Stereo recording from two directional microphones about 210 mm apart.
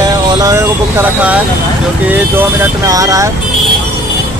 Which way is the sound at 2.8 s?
15° right (ahead or behind).